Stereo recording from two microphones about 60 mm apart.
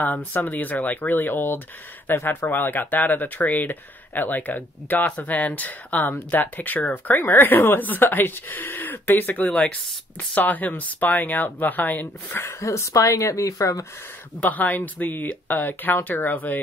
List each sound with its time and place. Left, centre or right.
0.0 s speech: left
12.4 s speech: left
14.4 s speech: left